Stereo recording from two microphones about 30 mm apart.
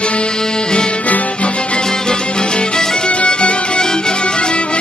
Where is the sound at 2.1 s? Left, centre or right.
Left.